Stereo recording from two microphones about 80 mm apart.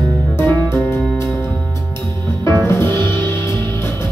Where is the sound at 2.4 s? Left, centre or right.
Left.